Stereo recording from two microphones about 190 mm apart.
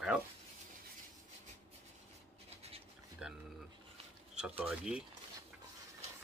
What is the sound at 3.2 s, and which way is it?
Speech, 5° right (ahead or behind).